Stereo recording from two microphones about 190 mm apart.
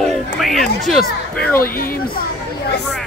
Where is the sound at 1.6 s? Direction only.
50° left (ahead or behind).